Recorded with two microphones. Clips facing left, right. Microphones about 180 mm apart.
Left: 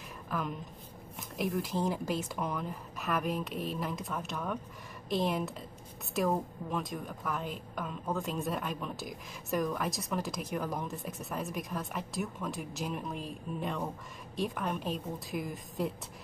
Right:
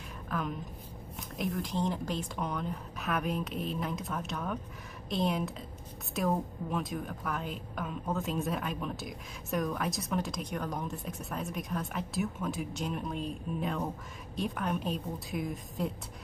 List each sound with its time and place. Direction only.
0.3 s a woman's voice: centre (ahead or behind)